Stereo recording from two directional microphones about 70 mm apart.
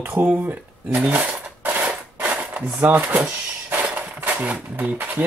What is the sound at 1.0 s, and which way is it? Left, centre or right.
Cutlery, right.